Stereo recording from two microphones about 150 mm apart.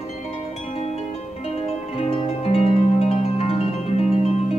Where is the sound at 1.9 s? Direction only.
40° left (ahead or behind).